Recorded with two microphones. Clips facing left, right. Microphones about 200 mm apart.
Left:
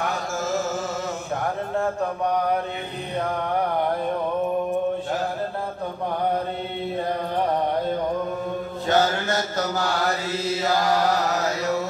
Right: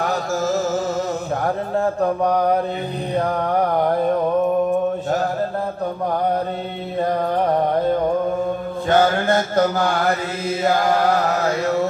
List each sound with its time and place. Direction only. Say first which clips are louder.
8.8 s mantra: right 5 dB; 50° right (ahead or behind)